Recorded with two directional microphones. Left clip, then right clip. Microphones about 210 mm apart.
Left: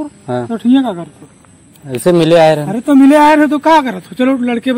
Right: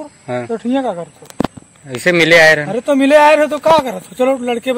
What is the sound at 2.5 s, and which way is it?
Speech, 35° right (ahead or behind).